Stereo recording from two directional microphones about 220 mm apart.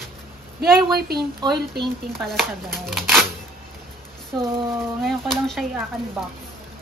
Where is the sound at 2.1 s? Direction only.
Centre (ahead or behind).